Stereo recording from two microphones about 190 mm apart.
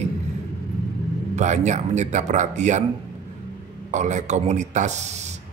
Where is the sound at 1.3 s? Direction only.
40° right (ahead or behind).